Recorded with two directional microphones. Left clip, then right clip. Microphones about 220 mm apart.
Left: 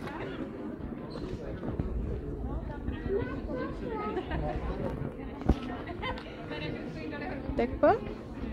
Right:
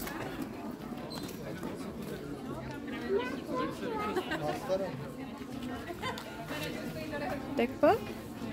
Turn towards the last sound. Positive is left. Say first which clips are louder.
# left 1 dB
turn(degrees=-20)  # may be behind; listen again after turning